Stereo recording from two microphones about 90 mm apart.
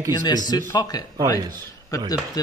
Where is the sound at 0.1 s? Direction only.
45° left (ahead or behind).